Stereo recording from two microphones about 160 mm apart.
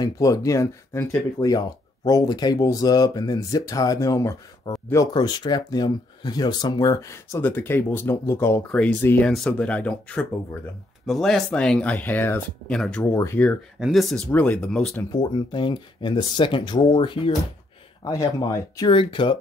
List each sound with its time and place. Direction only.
0.0 s speech: 20° left (ahead or behind); by 13.0 s 5° left (ahead or behind)
13.1 s speech: 15° left (ahead or behind)
13.7 s speech: centre (ahead or behind)
15.0 s speech: 25° left (ahead or behind)